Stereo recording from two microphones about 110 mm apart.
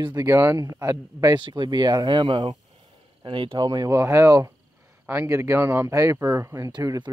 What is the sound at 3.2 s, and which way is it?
Speech, 50° right (ahead or behind).